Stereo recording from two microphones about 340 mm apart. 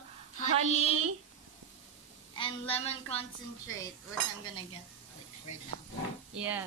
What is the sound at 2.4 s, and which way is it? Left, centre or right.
Speech, centre.